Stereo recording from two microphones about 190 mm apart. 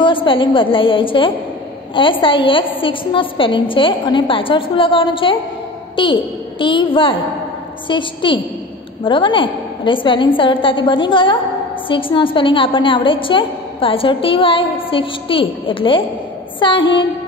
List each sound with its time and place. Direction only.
0.0 s a woman's voice: 25° left (ahead or behind)